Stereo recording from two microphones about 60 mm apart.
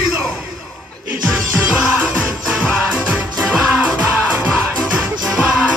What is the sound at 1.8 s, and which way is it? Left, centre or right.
Music, centre.